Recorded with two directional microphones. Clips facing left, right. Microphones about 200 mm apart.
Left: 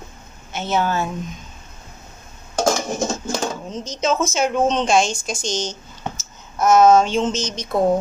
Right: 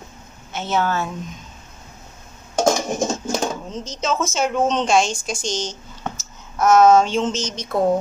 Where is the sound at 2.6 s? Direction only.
15° right (ahead or behind).